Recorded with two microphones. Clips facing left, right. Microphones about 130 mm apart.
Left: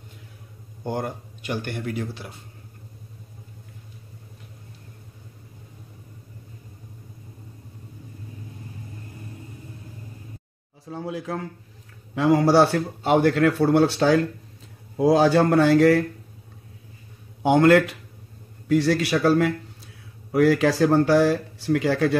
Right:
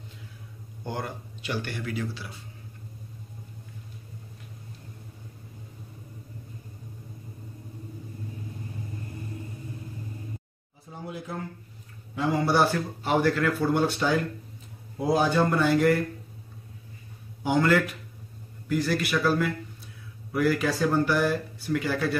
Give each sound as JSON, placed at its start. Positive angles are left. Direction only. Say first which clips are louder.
{"t": 0.8, "sound": "speech", "louder": "left 5 dB", "side_deg": 50}
{"t": 10.9, "sound": "a sound", "louder": "left 7 dB", "side_deg": 90}
{"t": 12.2, "sound": "a man's voice", "louder": "left 6 dB", "side_deg": 90}
{"t": 13.6, "sound": "speech", "louder": "left 6 dB", "side_deg": 85}
{"t": 17.4, "sound": "a man's voice", "louder": "left 7 dB", "side_deg": 65}
{"t": 18.7, "sound": "speech", "louder": "left 6 dB", "side_deg": 90}
{"t": 20.3, "sound": "speech", "louder": "left 6 dB", "side_deg": 90}